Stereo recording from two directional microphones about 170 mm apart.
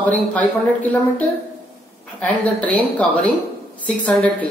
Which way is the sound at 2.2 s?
10° left (ahead or behind).